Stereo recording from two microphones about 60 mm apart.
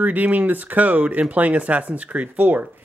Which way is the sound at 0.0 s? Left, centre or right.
Right.